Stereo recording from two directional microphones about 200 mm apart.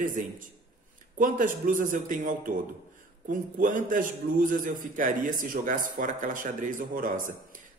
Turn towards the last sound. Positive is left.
turn(degrees=-40)  # may be behind; listen again after turning